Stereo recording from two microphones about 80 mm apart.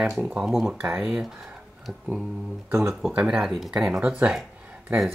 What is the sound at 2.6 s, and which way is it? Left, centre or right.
Speech, right.